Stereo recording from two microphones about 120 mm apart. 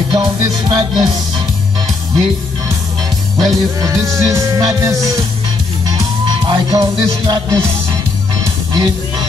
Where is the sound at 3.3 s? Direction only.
30° right (ahead or behind).